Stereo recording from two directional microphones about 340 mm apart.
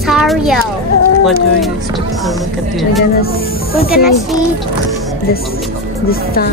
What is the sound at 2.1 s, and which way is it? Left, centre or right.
Speech, centre.